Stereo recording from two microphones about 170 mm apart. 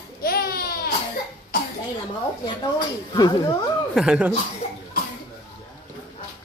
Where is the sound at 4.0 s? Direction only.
5° right (ahead or behind).